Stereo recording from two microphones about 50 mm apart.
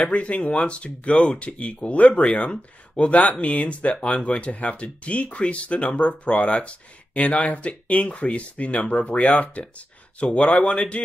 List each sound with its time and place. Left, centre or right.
0.0 s speech: left